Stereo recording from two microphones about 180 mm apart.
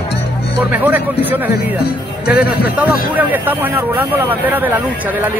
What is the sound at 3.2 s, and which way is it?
Speech, 10° right (ahead or behind).